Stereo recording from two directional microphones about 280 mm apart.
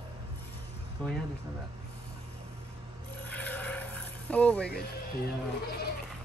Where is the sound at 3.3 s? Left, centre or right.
Centre.